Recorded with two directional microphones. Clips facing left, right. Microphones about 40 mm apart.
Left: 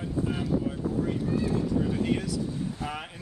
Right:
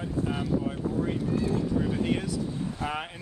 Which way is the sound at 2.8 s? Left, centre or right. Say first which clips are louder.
Right 3 dB; right.